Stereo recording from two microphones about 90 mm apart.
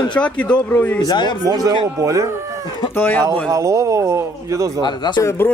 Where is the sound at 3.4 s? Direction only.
35° right (ahead or behind).